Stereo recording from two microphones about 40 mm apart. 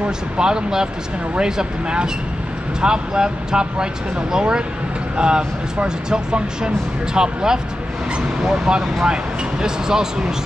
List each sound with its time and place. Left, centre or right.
0.4 s speech: centre